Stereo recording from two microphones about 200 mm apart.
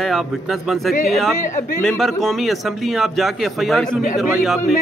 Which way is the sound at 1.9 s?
Centre (ahead or behind).